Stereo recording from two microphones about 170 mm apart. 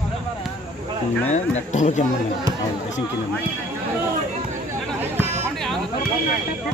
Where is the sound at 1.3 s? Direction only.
45° left (ahead or behind).